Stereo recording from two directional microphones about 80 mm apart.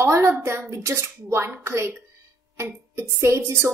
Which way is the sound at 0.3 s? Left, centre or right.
Right.